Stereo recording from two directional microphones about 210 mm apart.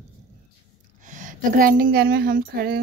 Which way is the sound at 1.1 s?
40° right (ahead or behind).